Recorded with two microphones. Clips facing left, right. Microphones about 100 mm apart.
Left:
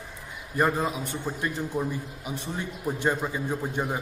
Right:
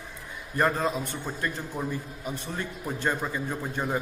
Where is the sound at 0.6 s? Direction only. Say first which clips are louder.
Even; 10° left (ahead or behind).